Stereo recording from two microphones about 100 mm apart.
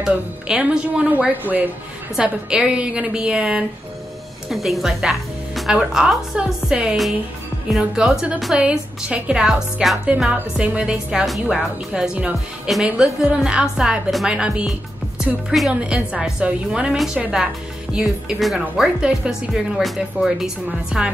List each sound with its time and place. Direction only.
0.0 s a woman's voice: 10° right (ahead or behind)